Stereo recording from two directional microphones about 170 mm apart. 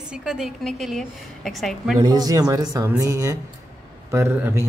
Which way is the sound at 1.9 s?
25° right (ahead or behind).